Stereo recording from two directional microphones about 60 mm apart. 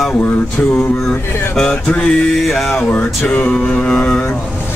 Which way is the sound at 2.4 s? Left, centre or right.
Centre.